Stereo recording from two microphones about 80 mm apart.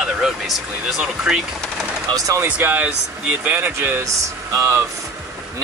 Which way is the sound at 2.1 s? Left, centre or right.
Right.